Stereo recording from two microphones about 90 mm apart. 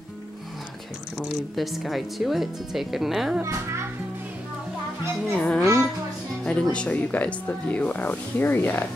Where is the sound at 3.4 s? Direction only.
35° right (ahead or behind).